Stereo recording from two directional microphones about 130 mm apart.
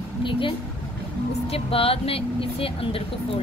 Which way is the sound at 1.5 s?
45° left (ahead or behind).